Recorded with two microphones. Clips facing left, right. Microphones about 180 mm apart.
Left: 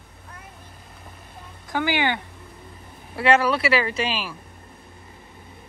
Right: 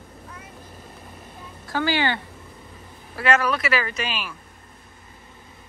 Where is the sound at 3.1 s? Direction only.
30° left (ahead or behind).